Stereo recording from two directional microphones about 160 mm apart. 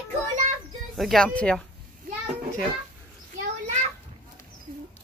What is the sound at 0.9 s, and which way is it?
Speech, centre (ahead or behind).